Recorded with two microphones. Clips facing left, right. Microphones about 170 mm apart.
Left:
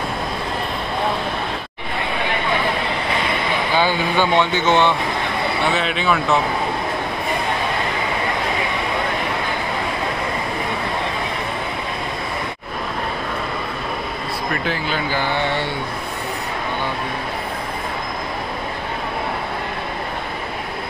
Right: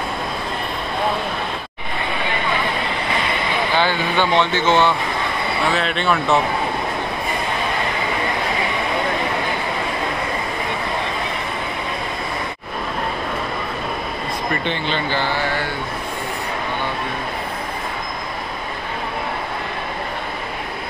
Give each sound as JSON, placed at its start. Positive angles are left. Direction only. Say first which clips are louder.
{"t": 3.7, "sound": "speech", "louder": "left 2 dB", "side_deg": 10}
{"t": 5.7, "sound": "speech", "louder": "right 1 dB", "side_deg": 0}
{"t": 14.5, "sound": "speech", "louder": "even", "side_deg": 5}
{"t": 15.3, "sound": "speech", "louder": "left 1 dB", "side_deg": 25}